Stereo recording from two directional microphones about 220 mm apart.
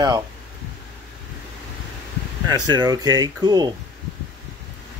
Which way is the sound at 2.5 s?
20° right (ahead or behind).